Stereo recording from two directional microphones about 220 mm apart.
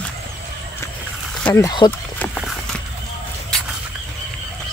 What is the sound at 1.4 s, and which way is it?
Speech, 15° left (ahead or behind).